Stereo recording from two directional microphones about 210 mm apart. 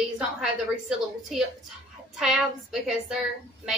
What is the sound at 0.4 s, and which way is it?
Speech, 5° right (ahead or behind).